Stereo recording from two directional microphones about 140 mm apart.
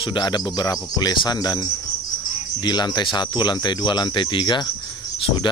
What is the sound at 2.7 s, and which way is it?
Speech, 30° left (ahead or behind).